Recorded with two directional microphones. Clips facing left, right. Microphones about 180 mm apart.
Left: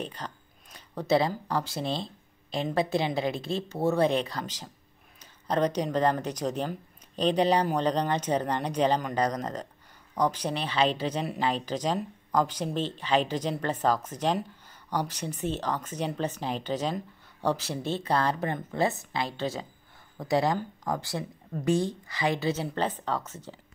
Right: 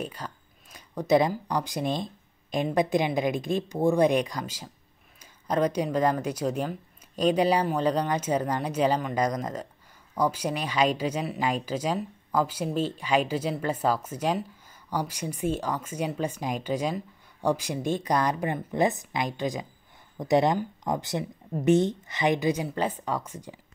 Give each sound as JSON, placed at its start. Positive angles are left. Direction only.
{"t": 0.0, "sound": "speech", "side_deg": -10}